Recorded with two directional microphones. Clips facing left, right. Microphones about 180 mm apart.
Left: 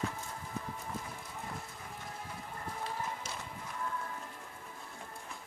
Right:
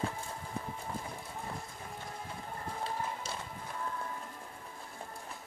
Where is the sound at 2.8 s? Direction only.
30° right (ahead or behind).